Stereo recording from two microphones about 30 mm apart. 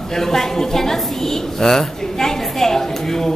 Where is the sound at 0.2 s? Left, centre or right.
Centre.